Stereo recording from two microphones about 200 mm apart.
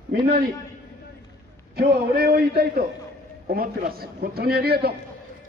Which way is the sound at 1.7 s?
50° right (ahead or behind).